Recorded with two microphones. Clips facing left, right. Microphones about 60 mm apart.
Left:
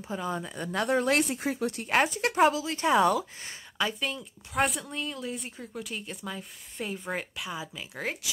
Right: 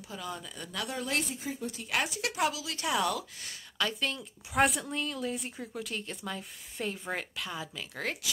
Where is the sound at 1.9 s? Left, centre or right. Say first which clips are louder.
Left 7 dB; left.